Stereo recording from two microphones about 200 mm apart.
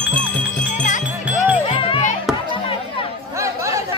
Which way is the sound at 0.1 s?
5° left (ahead or behind).